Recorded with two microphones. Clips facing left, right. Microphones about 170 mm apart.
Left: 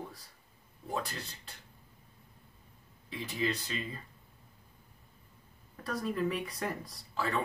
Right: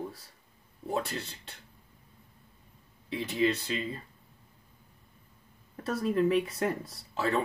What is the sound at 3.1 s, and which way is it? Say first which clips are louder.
Speech: right 6 dB; 30° right (ahead or behind).